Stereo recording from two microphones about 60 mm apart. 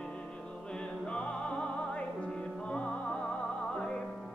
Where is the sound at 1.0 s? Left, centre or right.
Centre.